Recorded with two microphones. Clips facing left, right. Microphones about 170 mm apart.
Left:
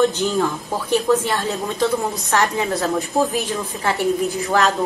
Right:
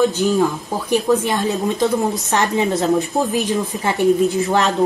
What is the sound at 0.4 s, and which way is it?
Speech, 15° right (ahead or behind).